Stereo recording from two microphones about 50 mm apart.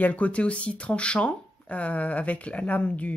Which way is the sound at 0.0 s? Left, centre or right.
Left.